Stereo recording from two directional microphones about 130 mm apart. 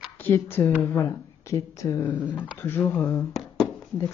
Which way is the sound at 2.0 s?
10° left (ahead or behind).